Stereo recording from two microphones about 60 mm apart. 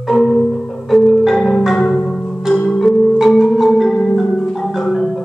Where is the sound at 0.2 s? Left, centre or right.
Centre.